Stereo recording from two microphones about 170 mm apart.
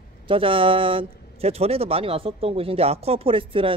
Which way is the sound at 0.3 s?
30° right (ahead or behind).